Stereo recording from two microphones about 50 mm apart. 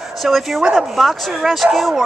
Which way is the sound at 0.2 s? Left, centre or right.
Centre.